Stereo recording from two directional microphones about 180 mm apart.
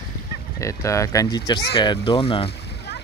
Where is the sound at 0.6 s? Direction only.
15° left (ahead or behind).